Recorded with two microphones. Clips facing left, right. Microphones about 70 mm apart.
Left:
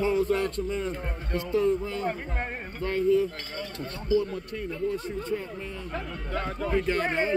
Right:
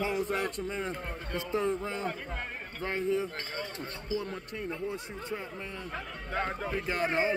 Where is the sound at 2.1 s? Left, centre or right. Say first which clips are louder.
Left 5 dB; left.